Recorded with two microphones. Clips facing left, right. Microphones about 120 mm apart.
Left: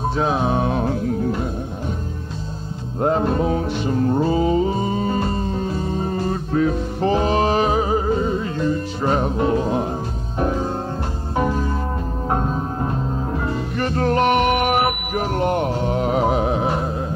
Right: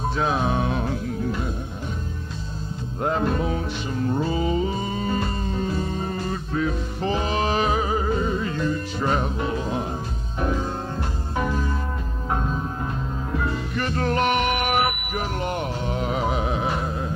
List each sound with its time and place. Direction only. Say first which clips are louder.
0.1 s music: left 3 dB; 30° left (ahead or behind)
3.0 s music: left 5 dB; 30° left (ahead or behind)